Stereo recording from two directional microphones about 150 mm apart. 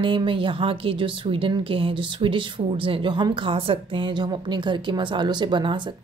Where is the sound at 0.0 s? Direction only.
35° right (ahead or behind).